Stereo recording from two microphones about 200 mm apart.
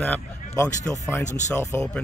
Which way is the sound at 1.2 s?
35° left (ahead or behind).